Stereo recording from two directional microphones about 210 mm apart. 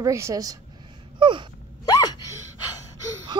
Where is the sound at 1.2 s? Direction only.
25° right (ahead or behind).